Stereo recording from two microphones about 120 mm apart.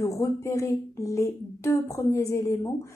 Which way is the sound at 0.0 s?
25° left (ahead or behind).